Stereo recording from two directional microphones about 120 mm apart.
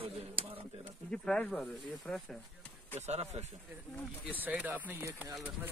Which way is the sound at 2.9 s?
65° right (ahead or behind).